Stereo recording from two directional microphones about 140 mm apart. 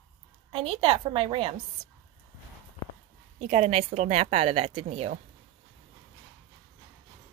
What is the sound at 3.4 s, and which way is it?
A woman's voice, 50° right (ahead or behind).